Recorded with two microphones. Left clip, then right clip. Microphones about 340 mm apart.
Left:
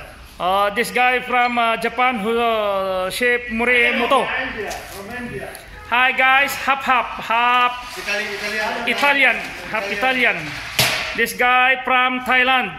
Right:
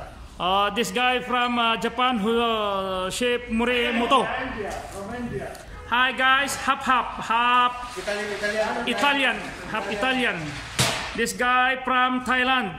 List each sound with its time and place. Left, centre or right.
0.4 s a man's voice: centre
5.9 s a man's voice: centre
8.8 s a man's voice: centre